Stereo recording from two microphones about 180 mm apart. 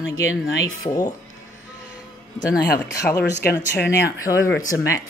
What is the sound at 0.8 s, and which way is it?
Speech, 20° left (ahead or behind).